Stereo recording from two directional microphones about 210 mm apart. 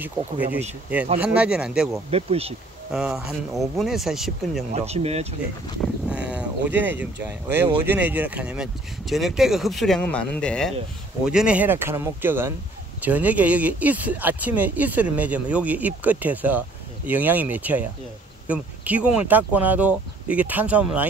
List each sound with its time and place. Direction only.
0.9 s speech: 5° right (ahead or behind)
2.0 s speech: 30° right (ahead or behind)
2.9 s speech: 5° right (ahead or behind)
4.7 s speech: 30° right (ahead or behind)
6.0 s boat: 5° right (ahead or behind)
7.8 s speech: 10° right (ahead or behind)